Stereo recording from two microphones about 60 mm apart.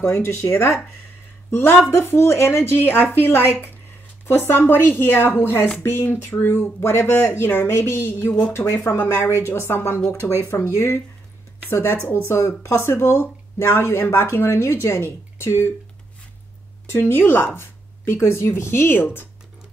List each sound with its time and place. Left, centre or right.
0.0 s speech: left
10.5 s speech: left
11.7 s speech: left
16.9 s speech: left